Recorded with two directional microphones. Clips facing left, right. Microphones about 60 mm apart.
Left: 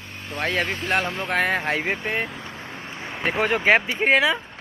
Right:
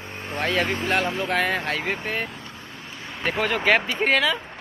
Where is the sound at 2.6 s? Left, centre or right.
Left.